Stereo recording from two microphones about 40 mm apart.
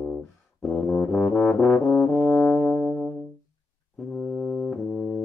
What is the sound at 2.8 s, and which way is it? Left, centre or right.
Music, centre.